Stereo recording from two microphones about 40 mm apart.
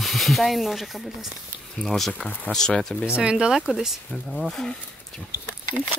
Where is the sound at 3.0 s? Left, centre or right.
Right.